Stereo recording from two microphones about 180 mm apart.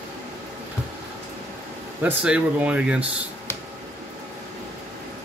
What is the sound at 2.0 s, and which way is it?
Speech, 5° right (ahead or behind).